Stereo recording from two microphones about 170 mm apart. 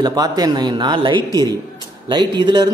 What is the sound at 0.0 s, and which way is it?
A man's voice, 25° right (ahead or behind).